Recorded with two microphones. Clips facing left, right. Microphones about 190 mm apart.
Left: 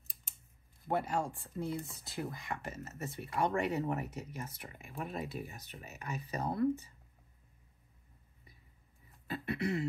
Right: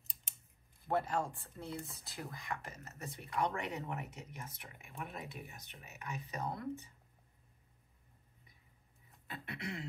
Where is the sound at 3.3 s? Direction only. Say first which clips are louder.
Left 5 dB; 30° left (ahead or behind).